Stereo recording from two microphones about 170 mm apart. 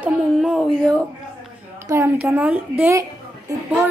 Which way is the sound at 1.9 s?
15° right (ahead or behind).